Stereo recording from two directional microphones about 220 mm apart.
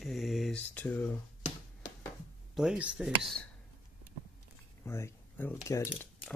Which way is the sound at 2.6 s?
5° right (ahead or behind).